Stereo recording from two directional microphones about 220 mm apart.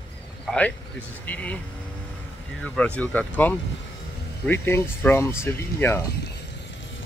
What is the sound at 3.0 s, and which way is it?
Speech, 5° left (ahead or behind).